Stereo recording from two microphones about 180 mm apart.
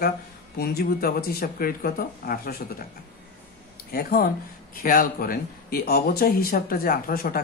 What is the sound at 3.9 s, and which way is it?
Speech, 55° left (ahead or behind).